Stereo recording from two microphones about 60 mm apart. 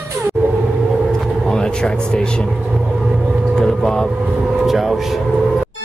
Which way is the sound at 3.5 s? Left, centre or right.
Centre.